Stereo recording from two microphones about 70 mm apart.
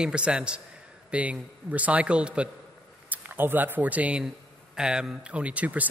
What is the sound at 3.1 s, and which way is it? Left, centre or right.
Speech, right.